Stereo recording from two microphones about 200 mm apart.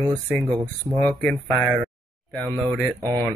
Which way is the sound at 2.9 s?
15° right (ahead or behind).